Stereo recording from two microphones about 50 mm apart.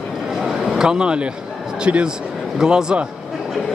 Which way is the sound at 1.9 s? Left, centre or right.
Right.